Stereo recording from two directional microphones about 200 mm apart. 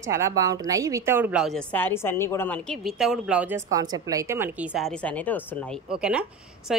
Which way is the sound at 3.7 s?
20° right (ahead or behind).